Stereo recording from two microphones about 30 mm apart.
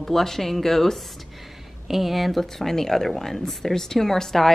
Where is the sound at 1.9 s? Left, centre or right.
Centre.